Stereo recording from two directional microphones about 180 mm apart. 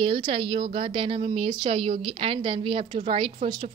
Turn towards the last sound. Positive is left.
turn(degrees=-30)  # may be behind; listen again after turning